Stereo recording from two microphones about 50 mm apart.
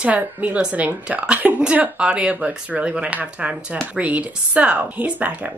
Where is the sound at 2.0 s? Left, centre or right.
Right.